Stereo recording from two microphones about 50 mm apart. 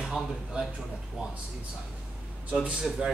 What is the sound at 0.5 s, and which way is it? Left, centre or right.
Speech, right.